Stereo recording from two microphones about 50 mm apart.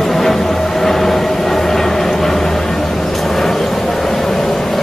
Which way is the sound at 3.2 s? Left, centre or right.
Centre.